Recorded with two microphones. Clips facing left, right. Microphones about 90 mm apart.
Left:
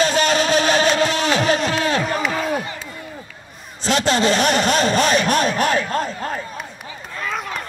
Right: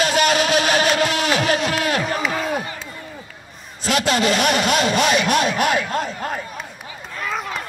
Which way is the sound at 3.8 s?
30° left (ahead or behind).